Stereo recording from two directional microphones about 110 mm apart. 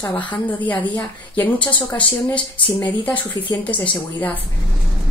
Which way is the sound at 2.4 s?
45° left (ahead or behind).